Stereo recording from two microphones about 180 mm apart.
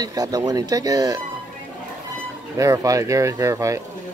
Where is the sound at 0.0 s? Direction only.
20° right (ahead or behind).